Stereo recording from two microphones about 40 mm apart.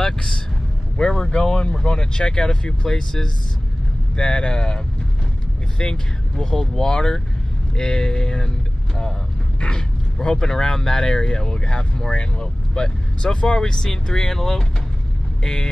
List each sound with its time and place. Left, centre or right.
0.0 s vehicle: centre
0.9 s speech: centre
9.6 s speech: centre